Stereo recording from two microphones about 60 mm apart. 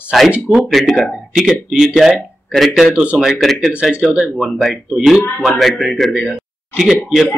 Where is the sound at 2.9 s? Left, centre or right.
Right.